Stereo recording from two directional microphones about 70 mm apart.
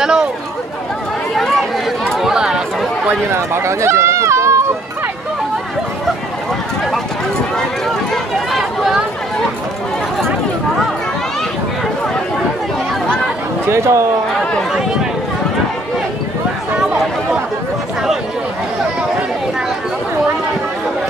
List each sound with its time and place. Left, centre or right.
0.0 s speech: centre
1.3 s chatter: centre
2.1 s chatter: centre
3.1 s speech: right
8.1 s chatter: centre
13.7 s speech: right